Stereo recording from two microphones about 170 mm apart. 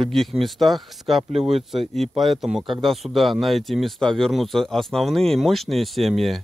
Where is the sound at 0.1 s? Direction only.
Centre (ahead or behind).